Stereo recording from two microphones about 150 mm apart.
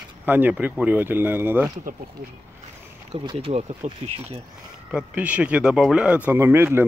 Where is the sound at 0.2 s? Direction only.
10° right (ahead or behind).